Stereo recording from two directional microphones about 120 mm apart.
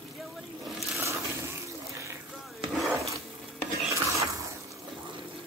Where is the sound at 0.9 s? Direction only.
25° right (ahead or behind).